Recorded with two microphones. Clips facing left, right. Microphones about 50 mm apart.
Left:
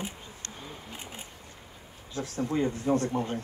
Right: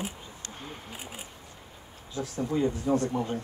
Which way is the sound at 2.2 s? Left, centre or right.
Left.